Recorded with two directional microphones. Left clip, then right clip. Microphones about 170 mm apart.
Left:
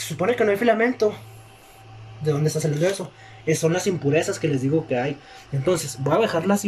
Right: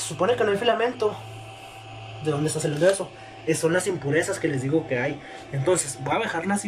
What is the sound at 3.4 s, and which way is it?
Speech, 20° left (ahead or behind).